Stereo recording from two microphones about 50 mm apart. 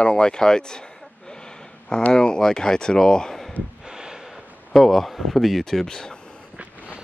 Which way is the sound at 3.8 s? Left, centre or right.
Centre.